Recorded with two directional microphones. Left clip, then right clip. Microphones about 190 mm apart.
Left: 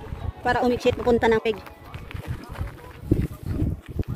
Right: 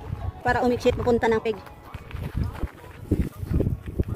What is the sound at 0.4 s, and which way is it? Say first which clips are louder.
Speech: left 1 dB; 5° left (ahead or behind).